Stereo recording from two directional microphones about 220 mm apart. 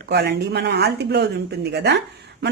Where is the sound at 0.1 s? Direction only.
50° right (ahead or behind).